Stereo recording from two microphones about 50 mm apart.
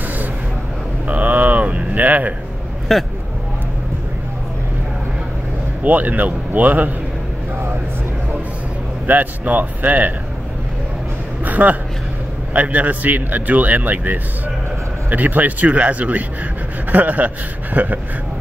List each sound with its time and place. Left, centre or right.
1.0 s a sound: right
2.9 s speech: centre
5.9 s speech: right
9.0 s speech: right
11.4 s a sound: right
12.5 s speech: right